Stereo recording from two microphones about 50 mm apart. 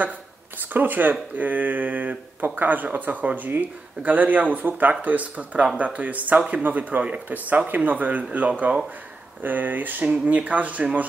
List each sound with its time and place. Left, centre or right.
0.6 s speech: right